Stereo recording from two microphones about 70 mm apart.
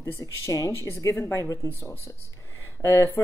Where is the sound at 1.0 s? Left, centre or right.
Left.